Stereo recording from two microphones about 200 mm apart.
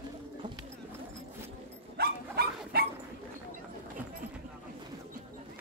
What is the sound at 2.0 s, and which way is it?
Dog, 50° right (ahead or behind).